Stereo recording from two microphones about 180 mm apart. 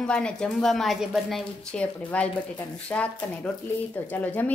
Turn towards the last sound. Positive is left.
turn(degrees=10)  # may be behind; listen again after turning